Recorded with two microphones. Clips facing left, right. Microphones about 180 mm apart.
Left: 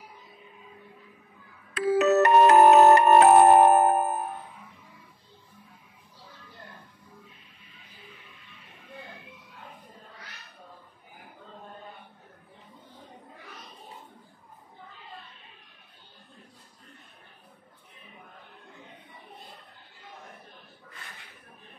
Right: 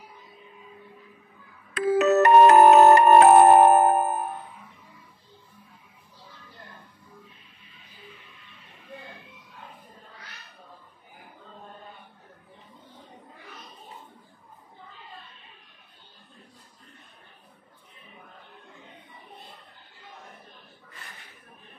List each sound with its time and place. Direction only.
1.7 s music: 55° right (ahead or behind)